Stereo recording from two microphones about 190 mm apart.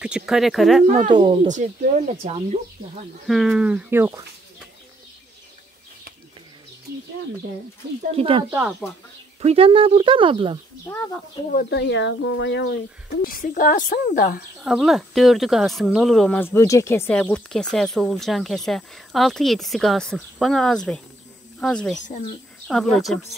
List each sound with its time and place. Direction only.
0.0 s speech: 5° right (ahead or behind)
0.8 s speech: 40° right (ahead or behind)
1.1 s speech: 25° right (ahead or behind)
1.5 s speech: 40° right (ahead or behind)
3.3 s speech: centre (ahead or behind)
8.1 s speech: 30° right (ahead or behind)
8.5 s speech: centre (ahead or behind)
9.4 s speech: 30° right (ahead or behind)
11.5 s speech: 65° left (ahead or behind)
13.2 s speech: 50° left (ahead or behind)
14.6 s speech: centre (ahead or behind)